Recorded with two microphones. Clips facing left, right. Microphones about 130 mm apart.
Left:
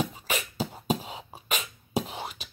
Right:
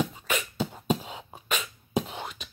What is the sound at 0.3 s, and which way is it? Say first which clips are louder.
Beatboxing: right 1 dB; 10° left (ahead or behind).